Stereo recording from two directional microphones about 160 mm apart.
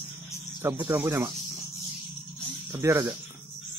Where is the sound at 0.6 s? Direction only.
20° right (ahead or behind).